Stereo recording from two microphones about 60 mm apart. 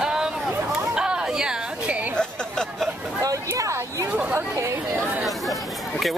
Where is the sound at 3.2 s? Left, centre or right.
Right.